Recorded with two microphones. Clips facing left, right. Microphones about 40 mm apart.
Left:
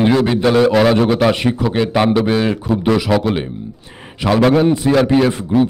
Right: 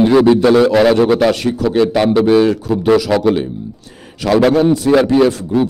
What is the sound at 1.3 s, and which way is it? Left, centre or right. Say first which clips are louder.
A man's voice: right 2 dB; left.